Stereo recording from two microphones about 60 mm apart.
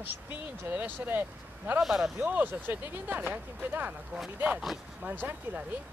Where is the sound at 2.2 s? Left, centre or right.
Right.